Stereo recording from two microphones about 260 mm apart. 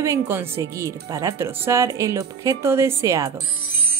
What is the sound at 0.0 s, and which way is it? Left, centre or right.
Speech, centre.